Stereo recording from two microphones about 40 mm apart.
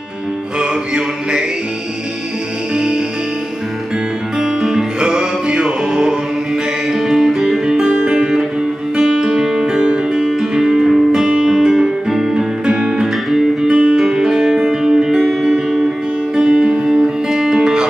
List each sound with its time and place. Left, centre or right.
0.6 s a sound: right
4.4 s music: centre
11.2 s guitar: right
12.6 s music: centre
13.0 s music: centre
13.7 s music: centre